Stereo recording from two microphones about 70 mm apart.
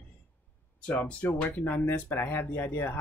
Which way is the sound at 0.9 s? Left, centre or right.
Centre.